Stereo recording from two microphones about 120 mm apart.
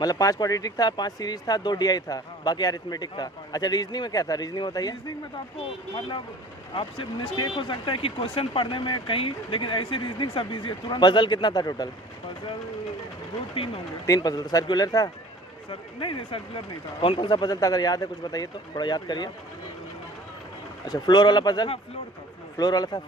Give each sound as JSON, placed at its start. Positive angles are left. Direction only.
{"t": 0.0, "sound": "speech", "side_deg": 30}
{"t": 5.9, "sound": "speech", "side_deg": 45}
{"t": 14.0, "sound": "speech", "side_deg": 30}
{"t": 15.7, "sound": "speech", "side_deg": 45}
{"t": 20.8, "sound": "speech", "side_deg": 35}